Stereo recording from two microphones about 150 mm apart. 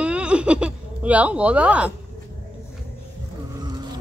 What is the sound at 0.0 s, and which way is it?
Speech, 5° right (ahead or behind).